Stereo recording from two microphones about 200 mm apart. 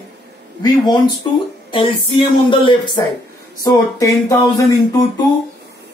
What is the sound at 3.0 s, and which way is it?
Speech, 20° left (ahead or behind).